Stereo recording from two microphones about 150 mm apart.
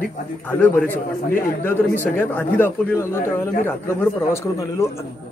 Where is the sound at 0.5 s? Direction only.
10° left (ahead or behind).